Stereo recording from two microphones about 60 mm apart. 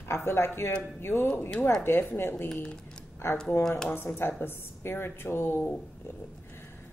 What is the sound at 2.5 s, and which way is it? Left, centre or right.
Speech, centre.